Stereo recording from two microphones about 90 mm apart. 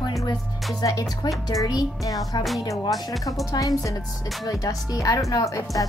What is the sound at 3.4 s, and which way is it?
Speech, 40° left (ahead or behind).